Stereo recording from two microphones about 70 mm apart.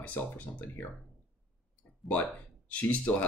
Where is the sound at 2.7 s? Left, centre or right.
Left.